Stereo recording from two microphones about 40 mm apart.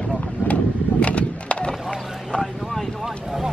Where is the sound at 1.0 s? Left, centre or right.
Left.